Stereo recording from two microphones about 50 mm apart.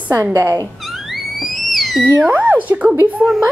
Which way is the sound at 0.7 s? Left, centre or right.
Centre.